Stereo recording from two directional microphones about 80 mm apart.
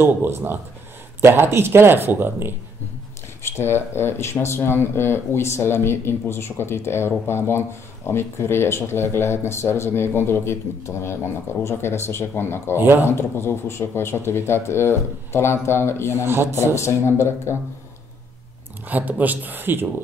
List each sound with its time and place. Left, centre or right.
0.0 s speech: right
3.4 s speech: left
12.7 s speech: right
13.1 s speech: left
16.2 s speech: right
16.5 s speech: left
18.9 s speech: right